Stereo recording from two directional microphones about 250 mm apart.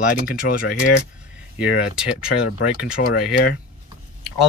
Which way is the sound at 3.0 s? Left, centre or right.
Left.